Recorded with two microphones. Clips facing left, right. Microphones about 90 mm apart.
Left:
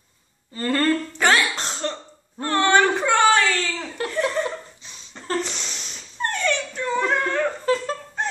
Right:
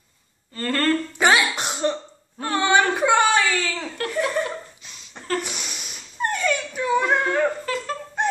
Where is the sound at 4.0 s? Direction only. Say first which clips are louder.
Left 1 dB; 20° left (ahead or behind).